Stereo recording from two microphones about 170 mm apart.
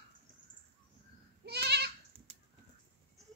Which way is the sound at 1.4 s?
75° right (ahead or behind).